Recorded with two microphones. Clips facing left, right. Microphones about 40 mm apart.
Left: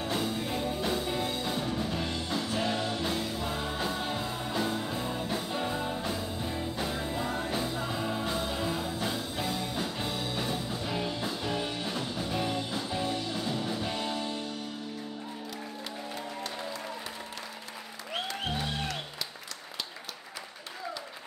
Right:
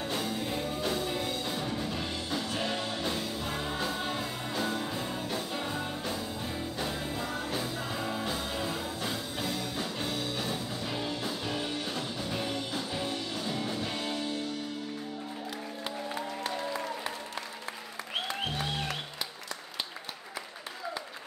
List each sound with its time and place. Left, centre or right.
0.0 s music: centre
7.1 s music: centre
7.4 s music: centre
16.2 s music: centre